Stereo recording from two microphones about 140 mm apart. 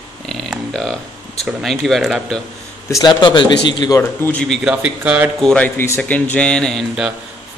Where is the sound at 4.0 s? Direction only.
15° left (ahead or behind).